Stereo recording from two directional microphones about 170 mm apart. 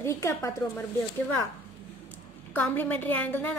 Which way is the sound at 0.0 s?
15° left (ahead or behind).